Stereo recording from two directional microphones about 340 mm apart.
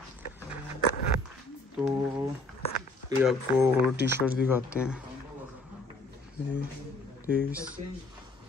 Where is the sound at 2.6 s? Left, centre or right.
Centre.